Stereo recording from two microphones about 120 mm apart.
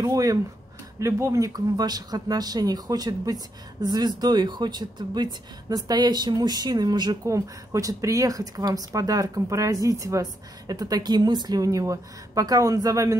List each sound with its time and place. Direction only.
0.0 s speech: 30° right (ahead or behind)